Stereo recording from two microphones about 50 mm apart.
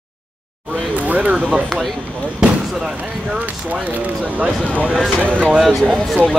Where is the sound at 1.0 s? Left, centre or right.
Right.